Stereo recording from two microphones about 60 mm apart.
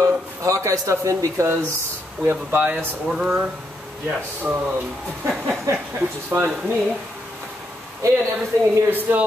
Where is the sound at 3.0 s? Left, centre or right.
Centre.